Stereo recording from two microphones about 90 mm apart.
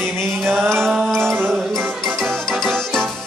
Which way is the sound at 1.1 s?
5° left (ahead or behind).